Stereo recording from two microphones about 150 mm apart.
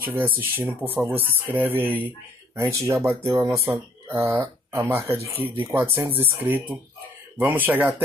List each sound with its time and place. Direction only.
0.0 s speech: 15° right (ahead or behind)